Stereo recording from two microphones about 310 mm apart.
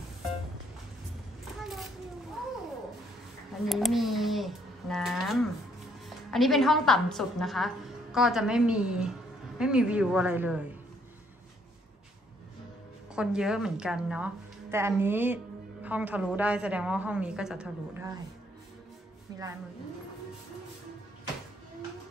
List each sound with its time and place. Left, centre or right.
1.6 s a sound: centre
3.6 s a woman's voice: centre
13.1 s a woman's voice: centre